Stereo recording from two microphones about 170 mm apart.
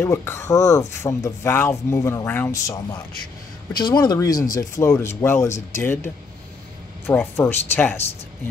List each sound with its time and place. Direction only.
0.0 s speech: 15° left (ahead or behind)
7.1 s speech: 15° left (ahead or behind)